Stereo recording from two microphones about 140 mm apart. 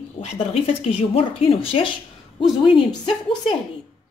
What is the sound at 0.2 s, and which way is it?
A woman's voice, 50° left (ahead or behind).